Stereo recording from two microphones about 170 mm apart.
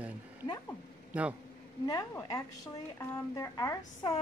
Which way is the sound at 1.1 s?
10° right (ahead or behind).